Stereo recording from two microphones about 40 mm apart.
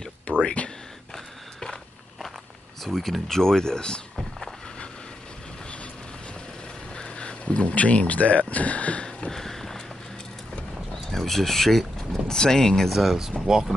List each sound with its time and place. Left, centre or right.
0.4 s speech: left
1.1 s a sound: centre
2.8 s speech: centre
7.0 s a sound: left
7.7 s speech: left
9.3 s a sound: centre
11.1 s speech: centre
12.9 s speech: centre
13.5 s speech: centre